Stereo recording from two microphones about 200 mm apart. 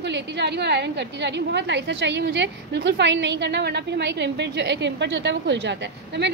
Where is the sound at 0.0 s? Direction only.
60° right (ahead or behind).